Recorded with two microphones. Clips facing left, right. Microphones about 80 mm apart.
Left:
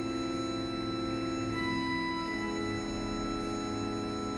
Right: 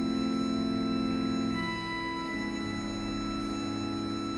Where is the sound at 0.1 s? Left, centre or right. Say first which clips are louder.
Right 4 dB; left.